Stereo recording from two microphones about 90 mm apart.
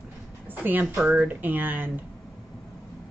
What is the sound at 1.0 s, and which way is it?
Speech, 20° right (ahead or behind).